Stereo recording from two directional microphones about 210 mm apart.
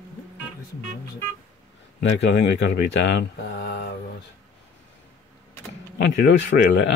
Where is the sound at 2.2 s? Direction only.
55° left (ahead or behind).